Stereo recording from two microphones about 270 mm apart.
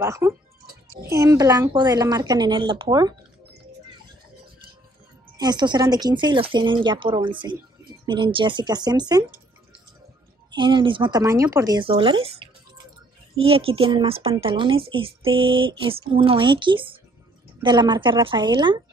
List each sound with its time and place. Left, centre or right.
0.0 s speech: centre
5.4 s speech: centre
10.5 s speech: centre